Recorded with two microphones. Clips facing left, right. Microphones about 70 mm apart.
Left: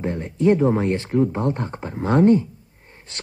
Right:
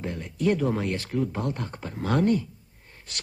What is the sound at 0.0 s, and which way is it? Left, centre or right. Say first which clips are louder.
A man's voice: left 7 dB; left.